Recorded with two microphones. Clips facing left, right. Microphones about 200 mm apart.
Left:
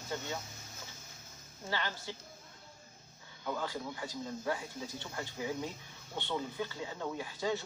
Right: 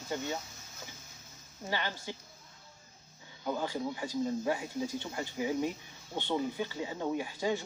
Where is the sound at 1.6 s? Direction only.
15° right (ahead or behind).